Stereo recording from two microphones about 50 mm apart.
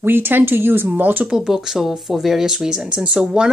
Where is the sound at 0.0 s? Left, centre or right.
Right.